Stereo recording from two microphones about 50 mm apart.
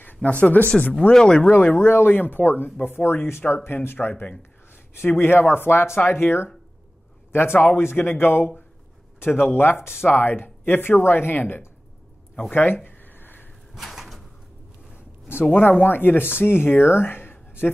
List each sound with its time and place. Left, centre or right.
0.0 s speech: left; by 1.5 s centre
1.5 s speech: left
1.8 s speech: left
12.4 s speech: left
12.8 s a sound: left
13.7 s bird: centre
15.8 s speech: left